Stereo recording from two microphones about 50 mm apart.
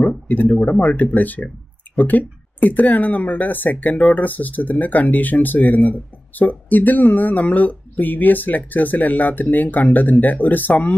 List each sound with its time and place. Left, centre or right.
0.3 s speech: left